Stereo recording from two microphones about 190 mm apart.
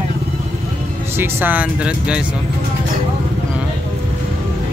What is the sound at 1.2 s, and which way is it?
Speech, 10° right (ahead or behind).